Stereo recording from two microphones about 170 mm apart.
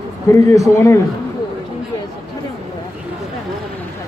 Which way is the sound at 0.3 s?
15° left (ahead or behind).